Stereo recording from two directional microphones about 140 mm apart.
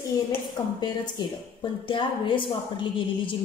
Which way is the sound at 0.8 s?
35° left (ahead or behind).